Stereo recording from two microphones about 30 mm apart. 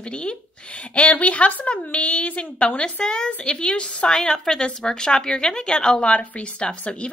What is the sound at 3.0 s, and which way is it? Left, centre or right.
A woman's voice, left.